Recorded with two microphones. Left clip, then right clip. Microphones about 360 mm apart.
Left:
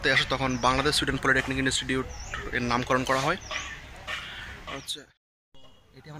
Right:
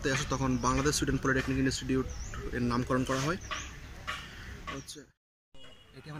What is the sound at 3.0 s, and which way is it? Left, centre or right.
Speech, left.